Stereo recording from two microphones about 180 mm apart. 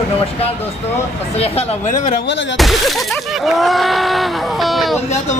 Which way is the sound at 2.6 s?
Centre (ahead or behind).